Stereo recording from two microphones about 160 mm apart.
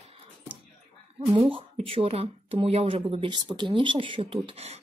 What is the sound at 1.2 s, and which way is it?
Speech, 35° right (ahead or behind).